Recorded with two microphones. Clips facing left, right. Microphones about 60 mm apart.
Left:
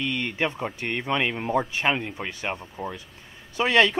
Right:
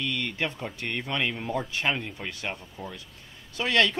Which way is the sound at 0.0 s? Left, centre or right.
Left.